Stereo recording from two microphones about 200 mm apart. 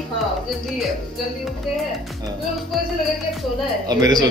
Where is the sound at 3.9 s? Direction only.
20° right (ahead or behind).